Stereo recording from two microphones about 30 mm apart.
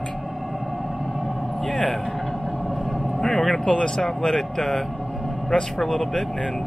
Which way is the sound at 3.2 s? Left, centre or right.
Centre.